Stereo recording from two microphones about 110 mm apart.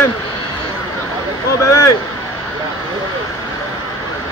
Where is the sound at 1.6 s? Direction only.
30° left (ahead or behind).